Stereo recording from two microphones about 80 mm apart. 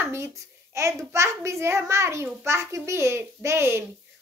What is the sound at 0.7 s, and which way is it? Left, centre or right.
A woman's voice, right.